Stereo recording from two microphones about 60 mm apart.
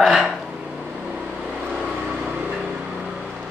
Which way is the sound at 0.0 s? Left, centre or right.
Centre.